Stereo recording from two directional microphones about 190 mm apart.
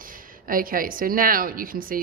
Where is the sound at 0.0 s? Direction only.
45° right (ahead or behind).